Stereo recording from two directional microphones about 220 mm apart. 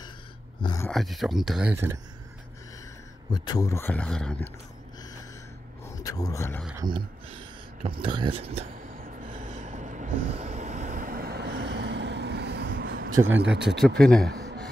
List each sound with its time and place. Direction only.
0.6 s a sound: 20° left (ahead or behind)
0.8 s speech: centre (ahead or behind)
3.3 s speech: 15° left (ahead or behind)
6.0 s speech: 15° left (ahead or behind)
6.8 s speech: 20° right (ahead or behind)
9.0 s vehicle: 40° right (ahead or behind)
13.1 s speech: 65° right (ahead or behind)
13.7 s speech: 5° left (ahead or behind)